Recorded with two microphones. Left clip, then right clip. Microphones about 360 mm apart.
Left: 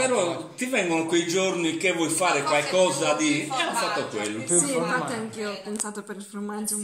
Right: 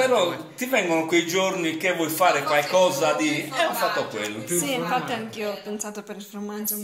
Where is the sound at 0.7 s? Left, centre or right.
Centre.